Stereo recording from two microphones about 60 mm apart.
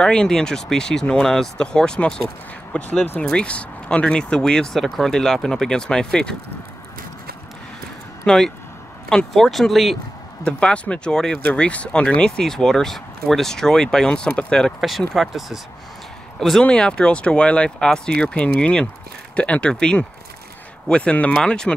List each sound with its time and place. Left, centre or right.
0.0 s speech: centre
8.3 s speech: centre
10.4 s speech: centre
14.8 s speech: centre
16.6 s speech: centre